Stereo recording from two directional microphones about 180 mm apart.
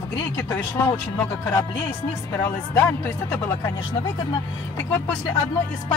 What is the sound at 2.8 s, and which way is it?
Speech, 10° left (ahead or behind).